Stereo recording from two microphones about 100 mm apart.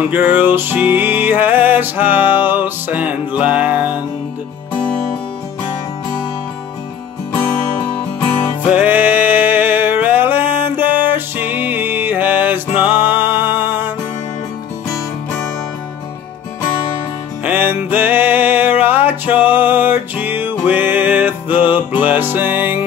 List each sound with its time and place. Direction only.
0.1 s music: 15° right (ahead or behind)
7.3 s music: 15° left (ahead or behind)
8.7 s music: 20° right (ahead or behind)
17.5 s music: 20° right (ahead or behind)